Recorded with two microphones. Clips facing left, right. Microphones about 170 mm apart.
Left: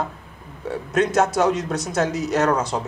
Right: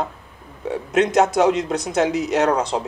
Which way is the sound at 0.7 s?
15° right (ahead or behind).